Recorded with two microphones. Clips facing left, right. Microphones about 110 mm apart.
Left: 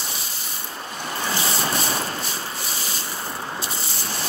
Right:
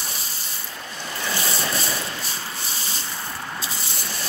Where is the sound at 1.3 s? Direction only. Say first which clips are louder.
Left 1 dB; 40° left (ahead or behind).